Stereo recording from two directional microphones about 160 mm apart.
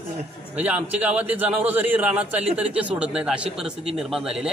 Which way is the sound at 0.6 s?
10° right (ahead or behind).